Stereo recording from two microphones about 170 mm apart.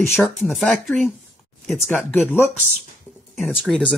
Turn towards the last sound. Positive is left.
turn(degrees=0)  # may be behind; listen again after turning